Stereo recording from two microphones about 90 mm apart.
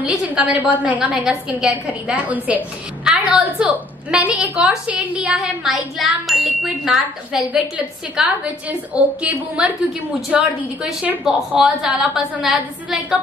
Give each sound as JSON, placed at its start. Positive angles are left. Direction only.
{"t": 0.3, "sound": "a woman's voice", "side_deg": -15}
{"t": 5.3, "sound": "a woman's voice", "side_deg": -5}